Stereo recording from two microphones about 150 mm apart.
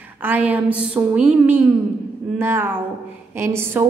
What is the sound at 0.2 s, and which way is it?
A woman's voice, 10° right (ahead or behind).